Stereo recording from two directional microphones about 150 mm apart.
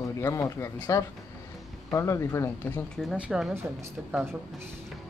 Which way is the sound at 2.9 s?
Centre (ahead or behind).